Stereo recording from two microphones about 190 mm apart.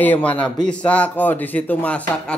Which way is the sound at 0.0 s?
10° left (ahead or behind).